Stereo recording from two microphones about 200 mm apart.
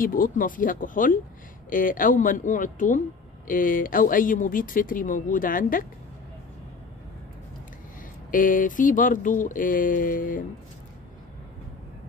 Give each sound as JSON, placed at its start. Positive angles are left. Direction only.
{"t": 0.0, "sound": "speech", "side_deg": 45}
{"t": 8.3, "sound": "speech", "side_deg": 45}